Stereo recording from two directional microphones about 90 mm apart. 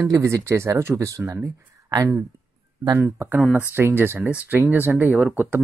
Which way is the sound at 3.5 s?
20° right (ahead or behind).